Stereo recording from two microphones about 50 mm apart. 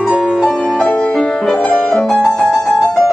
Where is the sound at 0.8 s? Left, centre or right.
Left.